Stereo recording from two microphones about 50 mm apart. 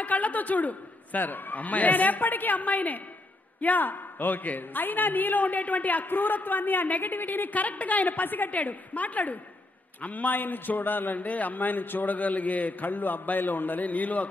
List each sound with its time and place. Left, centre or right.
0.0 s a man's voice: left